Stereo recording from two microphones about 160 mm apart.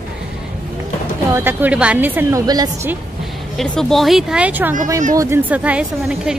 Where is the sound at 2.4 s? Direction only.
25° right (ahead or behind).